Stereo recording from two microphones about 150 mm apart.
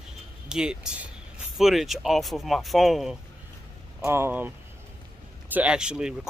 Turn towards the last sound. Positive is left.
turn(degrees=-5)  # may be behind; listen again after turning